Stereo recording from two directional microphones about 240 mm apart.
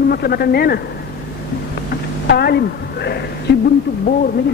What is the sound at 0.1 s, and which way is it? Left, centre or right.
Speech, left.